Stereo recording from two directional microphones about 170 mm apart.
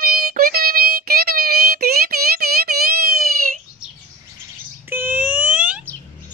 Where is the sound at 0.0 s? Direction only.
60° right (ahead or behind).